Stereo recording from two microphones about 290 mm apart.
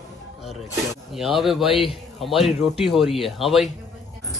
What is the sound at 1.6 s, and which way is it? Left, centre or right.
Speech, centre.